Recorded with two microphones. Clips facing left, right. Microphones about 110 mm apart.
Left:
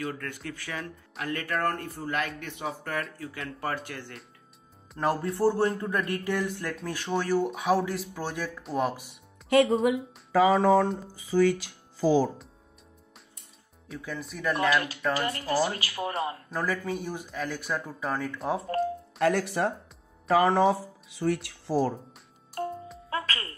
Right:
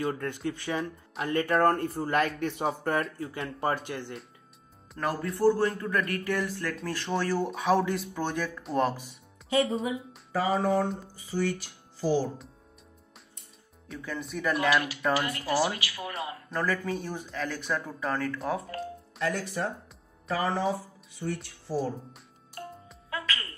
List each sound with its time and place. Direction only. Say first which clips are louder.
0.0 s a man's voice: right 4 dB; 25° right (ahead or behind)
4.9 s speech: left 3 dB; 25° left (ahead or behind)
9.5 s speech: left 5 dB; 65° left (ahead or behind)
9.8 s speech: left 7 dB; 90° left
13.8 s speech: even; centre (ahead or behind)
15.2 s speech: left 1 dB; 35° left (ahead or behind)
16.4 s speech: even; 5° left (ahead or behind)
18.4 s speech: left 2 dB; 25° left (ahead or behind)
19.1 s speech: left 5 dB; 65° left (ahead or behind); by 21.9 s 90° left
22.6 s music: left 9 dB; 35° left (ahead or behind)